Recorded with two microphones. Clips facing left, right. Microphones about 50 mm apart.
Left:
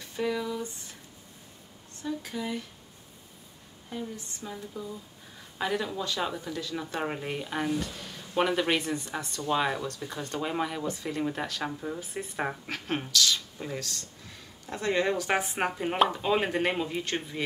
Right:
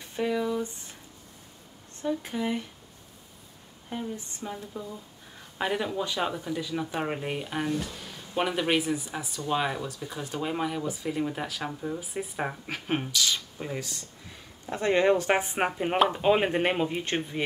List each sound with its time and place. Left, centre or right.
0.1 s a sound: centre
2.0 s speech: right
3.9 s speech: right